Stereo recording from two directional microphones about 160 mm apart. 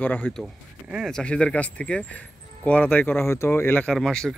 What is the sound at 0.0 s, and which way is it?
Speech, 10° left (ahead or behind).